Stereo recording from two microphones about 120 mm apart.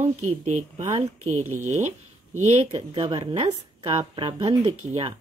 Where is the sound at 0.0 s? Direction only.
75° right (ahead or behind).